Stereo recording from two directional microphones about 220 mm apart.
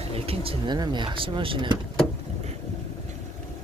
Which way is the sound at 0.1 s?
25° right (ahead or behind).